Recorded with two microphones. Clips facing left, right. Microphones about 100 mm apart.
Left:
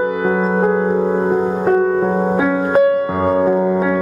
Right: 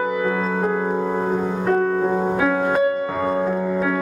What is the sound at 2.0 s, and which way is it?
Music, 30° left (ahead or behind).